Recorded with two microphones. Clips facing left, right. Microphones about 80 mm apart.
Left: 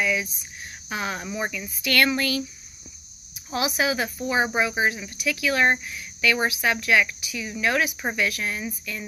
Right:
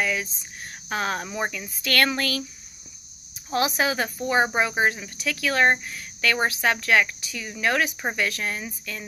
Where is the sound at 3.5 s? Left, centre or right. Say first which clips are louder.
Right 1 dB; right.